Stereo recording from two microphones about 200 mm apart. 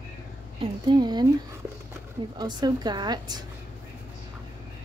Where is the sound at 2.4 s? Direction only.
20° right (ahead or behind).